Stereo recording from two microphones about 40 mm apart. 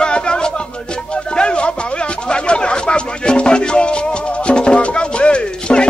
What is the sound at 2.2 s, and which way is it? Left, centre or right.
Music, left.